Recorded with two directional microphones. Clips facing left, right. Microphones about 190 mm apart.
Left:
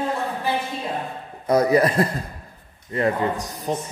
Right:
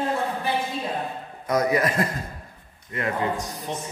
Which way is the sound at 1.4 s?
30° left (ahead or behind).